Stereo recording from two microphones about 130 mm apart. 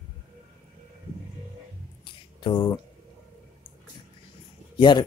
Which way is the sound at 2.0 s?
35° left (ahead or behind).